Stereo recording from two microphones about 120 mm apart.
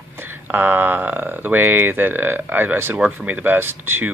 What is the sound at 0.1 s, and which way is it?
Speech, 15° right (ahead or behind).